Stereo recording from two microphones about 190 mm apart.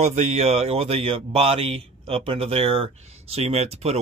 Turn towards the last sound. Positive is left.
turn(degrees=-35)  # may be behind; listen again after turning